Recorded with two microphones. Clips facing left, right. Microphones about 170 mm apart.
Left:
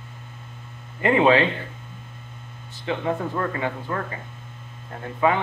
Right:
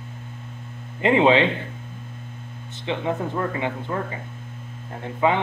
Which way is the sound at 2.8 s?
15° right (ahead or behind).